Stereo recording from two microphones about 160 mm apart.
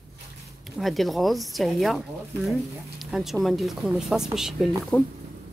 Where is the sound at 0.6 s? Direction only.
Centre (ahead or behind).